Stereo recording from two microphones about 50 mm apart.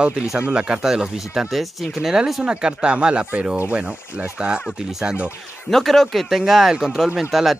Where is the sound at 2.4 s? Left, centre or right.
Centre.